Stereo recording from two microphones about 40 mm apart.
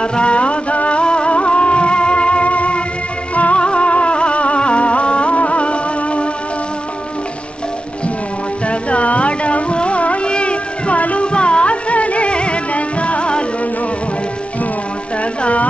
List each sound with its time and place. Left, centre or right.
0.0 s music: left
8.6 s music: left